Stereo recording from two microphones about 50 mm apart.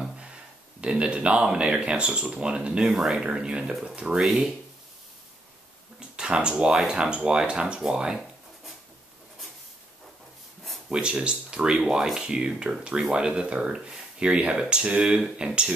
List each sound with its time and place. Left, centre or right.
0.7 s speech: right
2.8 s speech: centre
4.2 s speech: centre
5.9 s a sound: centre
6.7 s speech: centre
7.0 s speech: centre
10.9 s speech: centre